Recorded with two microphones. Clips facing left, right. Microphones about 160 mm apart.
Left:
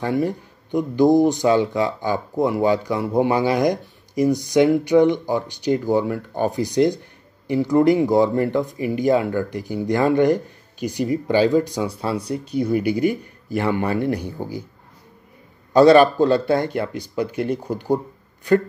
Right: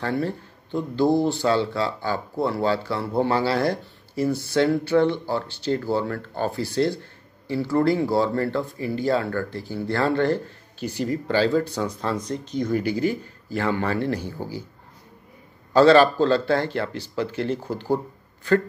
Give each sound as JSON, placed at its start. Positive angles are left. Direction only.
{"t": 0.0, "sound": "speech", "side_deg": 15}
{"t": 15.7, "sound": "speech", "side_deg": 15}